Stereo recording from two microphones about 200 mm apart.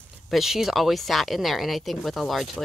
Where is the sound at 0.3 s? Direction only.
Centre (ahead or behind).